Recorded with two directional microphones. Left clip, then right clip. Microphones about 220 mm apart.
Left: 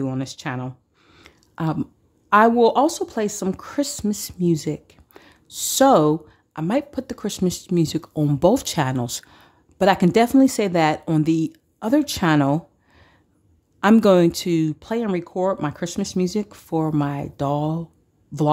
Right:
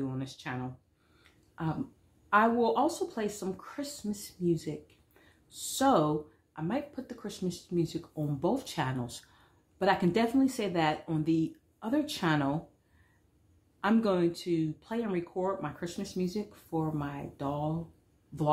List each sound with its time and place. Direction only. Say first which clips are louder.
0.0 s speech: left 11 dB; 50° left (ahead or behind)
1.5 s a sound: left 10 dB; 55° left (ahead or behind)
2.2 s speech: left 11 dB; 50° left (ahead or behind)
13.7 s speech: left 13 dB; 50° left (ahead or behind)